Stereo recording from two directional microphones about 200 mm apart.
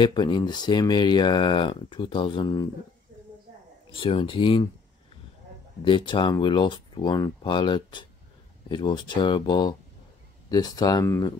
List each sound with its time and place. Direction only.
0.0 s speech: 25° left (ahead or behind)
3.9 s speech: 25° left (ahead or behind)
5.9 s speech: 25° left (ahead or behind)